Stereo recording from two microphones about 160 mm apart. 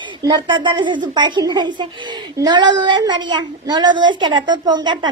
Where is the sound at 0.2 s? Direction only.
25° right (ahead or behind).